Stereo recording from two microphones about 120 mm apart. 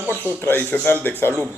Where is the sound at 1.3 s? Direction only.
20° right (ahead or behind).